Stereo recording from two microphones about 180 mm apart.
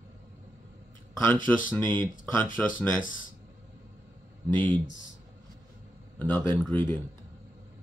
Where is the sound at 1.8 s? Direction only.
25° right (ahead or behind).